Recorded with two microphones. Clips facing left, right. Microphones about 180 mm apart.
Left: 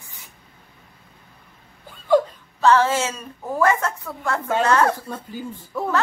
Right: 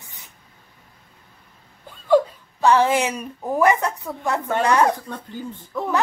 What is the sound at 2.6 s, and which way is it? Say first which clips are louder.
A woman's voice: even; 15° right (ahead or behind).